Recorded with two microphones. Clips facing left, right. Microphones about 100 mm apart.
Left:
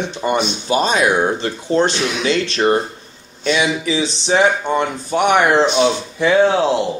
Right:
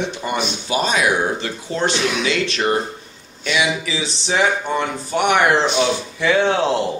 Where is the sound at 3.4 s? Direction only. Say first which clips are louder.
Left 3 dB; 25° left (ahead or behind).